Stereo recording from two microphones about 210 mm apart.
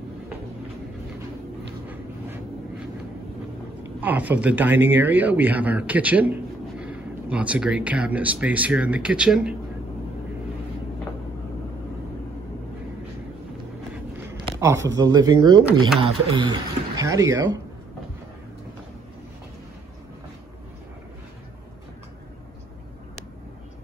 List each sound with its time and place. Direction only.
4.0 s speech: 10° right (ahead or behind)
14.6 s speech: 15° right (ahead or behind)